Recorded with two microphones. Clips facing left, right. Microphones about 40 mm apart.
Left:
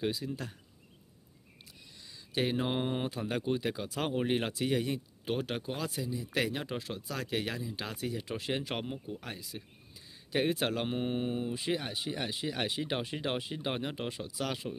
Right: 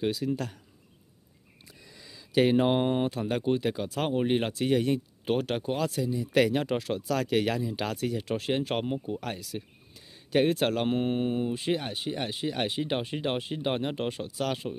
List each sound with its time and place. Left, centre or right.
0.2 s speech: right
2.4 s speech: right
2.7 s speech: right
3.1 s speech: right
4.3 s speech: right
4.6 s speech: right
8.6 s speech: right
9.9 s a sound: right
10.5 s speech: right